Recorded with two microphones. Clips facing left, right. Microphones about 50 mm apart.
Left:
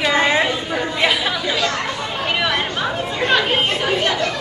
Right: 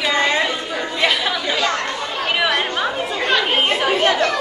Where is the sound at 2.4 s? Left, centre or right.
Centre.